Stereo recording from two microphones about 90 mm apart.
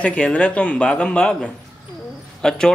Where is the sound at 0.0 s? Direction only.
15° left (ahead or behind).